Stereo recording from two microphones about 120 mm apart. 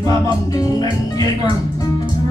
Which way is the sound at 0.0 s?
30° left (ahead or behind).